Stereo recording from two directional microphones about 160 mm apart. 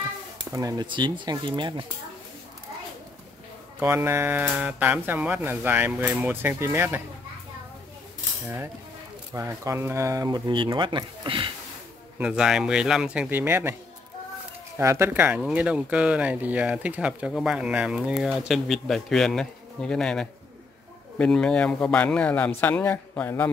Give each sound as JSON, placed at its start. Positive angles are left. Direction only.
{"t": 0.5, "sound": "speech", "side_deg": -20}
{"t": 3.8, "sound": "speech", "side_deg": -15}
{"t": 9.3, "sound": "speech", "side_deg": -15}
{"t": 12.2, "sound": "speech", "side_deg": -5}
{"t": 14.8, "sound": "a man's voice", "side_deg": -15}